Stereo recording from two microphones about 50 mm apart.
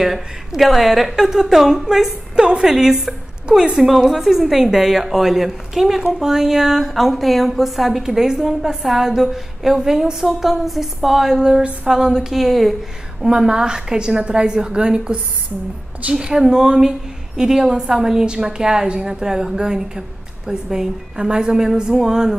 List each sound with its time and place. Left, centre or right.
0.0 s a woman's voice: centre
3.7 s a woman's voice: centre